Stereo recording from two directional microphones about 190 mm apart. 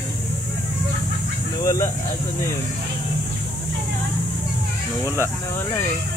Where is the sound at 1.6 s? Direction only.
20° left (ahead or behind).